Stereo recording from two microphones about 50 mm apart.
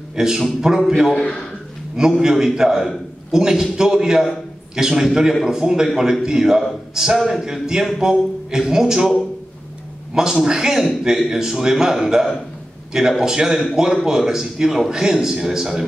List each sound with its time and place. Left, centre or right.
0.1 s a man's voice: centre
1.1 s a man's voice: centre
2.0 s a man's voice: centre
10.1 s a man's voice: centre